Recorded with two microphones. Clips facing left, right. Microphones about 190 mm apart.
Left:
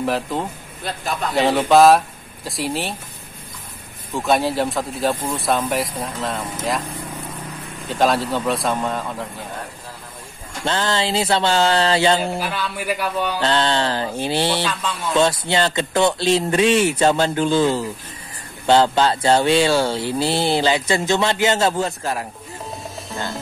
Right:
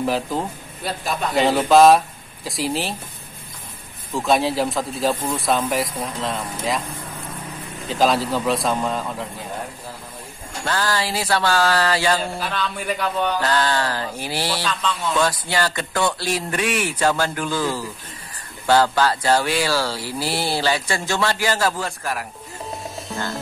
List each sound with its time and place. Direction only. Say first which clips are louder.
0.0 s speech: even; centre (ahead or behind)
4.1 s speech: even; centre (ahead or behind)
7.9 s speech: even; centre (ahead or behind)
10.6 s speech: left 2 dB; 25° left (ahead or behind)
12.2 s speech: left 2 dB; 10° left (ahead or behind)
13.4 s speech: left 2 dB; 25° left (ahead or behind)
14.7 s speech: right 1 dB; 10° left (ahead or behind)
15.1 s speech: left 6 dB; 25° left (ahead or behind)